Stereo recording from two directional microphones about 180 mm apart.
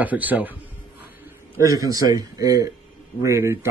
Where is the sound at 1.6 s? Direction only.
20° right (ahead or behind).